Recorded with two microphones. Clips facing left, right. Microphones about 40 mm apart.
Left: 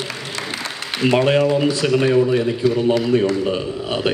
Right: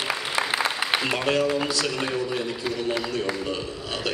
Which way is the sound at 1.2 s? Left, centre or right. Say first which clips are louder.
Left 8 dB; left.